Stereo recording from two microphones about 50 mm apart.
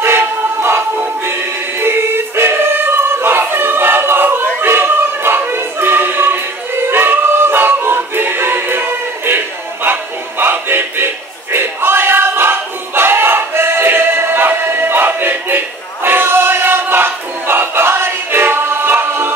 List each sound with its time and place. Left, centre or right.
0.0 s music: right
1.8 s choir: right
10.4 s choir: right
11.5 s a sound: right